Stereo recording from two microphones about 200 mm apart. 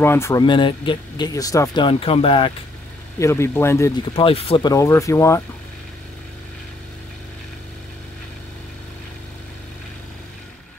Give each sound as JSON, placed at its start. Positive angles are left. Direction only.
{"t": 0.0, "sound": "speech", "side_deg": 10}
{"t": 3.2, "sound": "speech", "side_deg": 15}
{"t": 4.1, "sound": "speech", "side_deg": 30}